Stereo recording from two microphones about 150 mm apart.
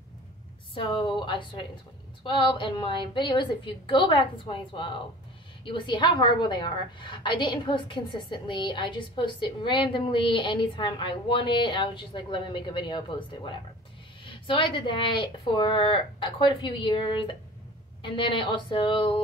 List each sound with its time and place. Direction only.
0.7 s a woman's voice: 30° left (ahead or behind)